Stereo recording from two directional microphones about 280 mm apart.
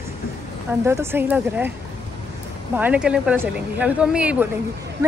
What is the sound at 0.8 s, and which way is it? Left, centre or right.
Speech, centre.